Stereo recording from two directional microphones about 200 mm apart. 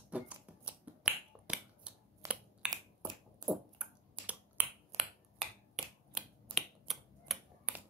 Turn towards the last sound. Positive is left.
turn(degrees=-5)  # may be behind; listen again after turning